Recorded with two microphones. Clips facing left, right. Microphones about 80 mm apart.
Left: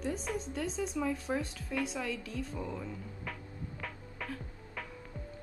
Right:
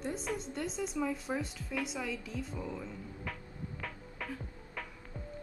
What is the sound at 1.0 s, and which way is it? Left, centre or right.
Speech, centre.